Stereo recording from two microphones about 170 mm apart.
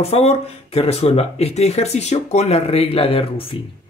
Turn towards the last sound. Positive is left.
turn(degrees=35)  # may be behind; listen again after turning